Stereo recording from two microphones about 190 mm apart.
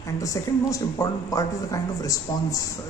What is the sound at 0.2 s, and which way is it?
Speech, 15° left (ahead or behind).